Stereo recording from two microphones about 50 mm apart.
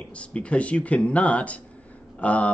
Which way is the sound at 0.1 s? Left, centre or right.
Left.